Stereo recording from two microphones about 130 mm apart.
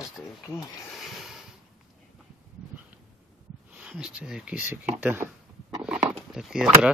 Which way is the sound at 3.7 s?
5° right (ahead or behind).